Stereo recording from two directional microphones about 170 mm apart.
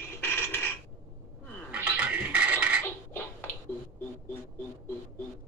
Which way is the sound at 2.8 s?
10° left (ahead or behind).